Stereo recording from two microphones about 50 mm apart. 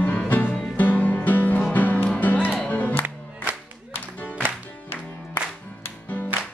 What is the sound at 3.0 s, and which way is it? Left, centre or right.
Music, right.